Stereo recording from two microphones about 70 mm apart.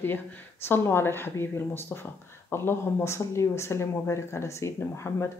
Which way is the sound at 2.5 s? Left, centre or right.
Left.